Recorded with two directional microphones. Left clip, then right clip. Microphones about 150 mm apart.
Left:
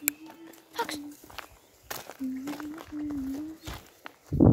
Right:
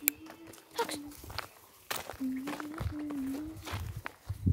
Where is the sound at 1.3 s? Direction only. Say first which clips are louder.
Right 1 dB; 45° left (ahead or behind).